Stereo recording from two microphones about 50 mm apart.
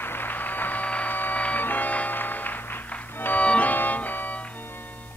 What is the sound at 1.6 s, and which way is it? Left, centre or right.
Music, left.